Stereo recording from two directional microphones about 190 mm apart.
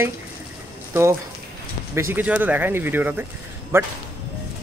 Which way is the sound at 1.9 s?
10° right (ahead or behind).